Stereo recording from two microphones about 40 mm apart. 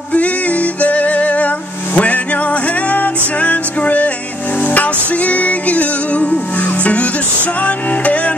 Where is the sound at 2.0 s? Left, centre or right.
Left.